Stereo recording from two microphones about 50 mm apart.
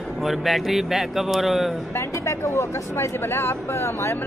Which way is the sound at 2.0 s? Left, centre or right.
Left.